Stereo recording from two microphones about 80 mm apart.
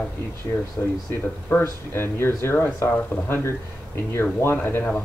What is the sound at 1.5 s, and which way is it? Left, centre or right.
Speech, left.